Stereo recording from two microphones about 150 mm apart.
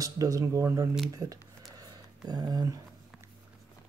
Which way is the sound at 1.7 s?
25° right (ahead or behind).